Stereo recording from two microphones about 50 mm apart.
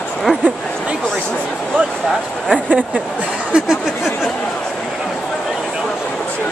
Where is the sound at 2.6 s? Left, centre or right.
Right.